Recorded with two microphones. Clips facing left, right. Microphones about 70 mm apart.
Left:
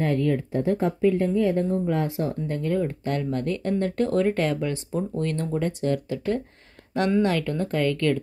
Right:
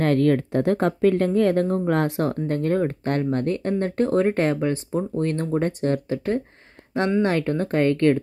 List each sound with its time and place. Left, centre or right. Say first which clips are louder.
0.0 s speech: right 4 dB; right